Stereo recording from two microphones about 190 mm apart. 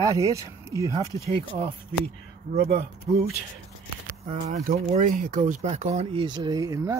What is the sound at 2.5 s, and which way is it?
Speech, 35° right (ahead or behind).